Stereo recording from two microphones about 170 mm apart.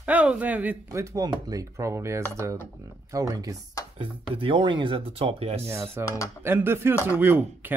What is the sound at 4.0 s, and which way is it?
Speech, 30° right (ahead or behind).